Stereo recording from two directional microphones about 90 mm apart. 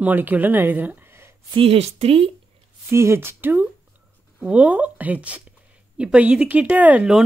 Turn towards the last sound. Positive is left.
turn(degrees=-15)  # may be behind; listen again after turning